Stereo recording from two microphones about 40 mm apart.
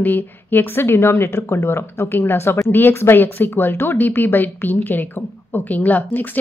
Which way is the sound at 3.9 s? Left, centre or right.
Left.